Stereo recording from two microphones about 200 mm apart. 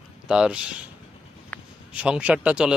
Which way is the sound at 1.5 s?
5° left (ahead or behind).